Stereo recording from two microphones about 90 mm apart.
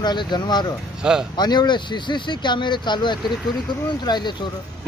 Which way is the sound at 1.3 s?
50° left (ahead or behind).